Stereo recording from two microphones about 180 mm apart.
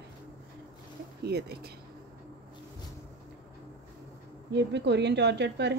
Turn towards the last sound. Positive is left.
turn(degrees=-70)  # may be behind; listen again after turning